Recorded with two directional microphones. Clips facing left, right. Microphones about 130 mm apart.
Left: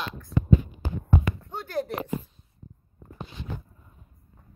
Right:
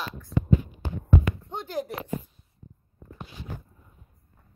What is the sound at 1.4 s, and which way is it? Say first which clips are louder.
Speech: left 1 dB; 15° right (ahead or behind).